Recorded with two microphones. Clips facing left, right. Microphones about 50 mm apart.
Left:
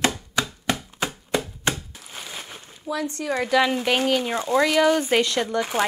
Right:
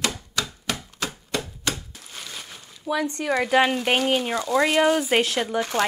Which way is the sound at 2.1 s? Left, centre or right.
Centre.